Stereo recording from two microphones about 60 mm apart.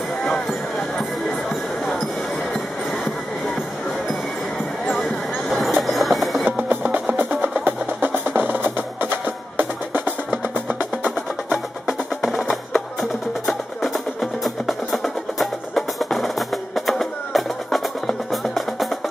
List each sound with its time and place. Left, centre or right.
5.5 s train: centre
6.7 s music: right
11.8 s music: centre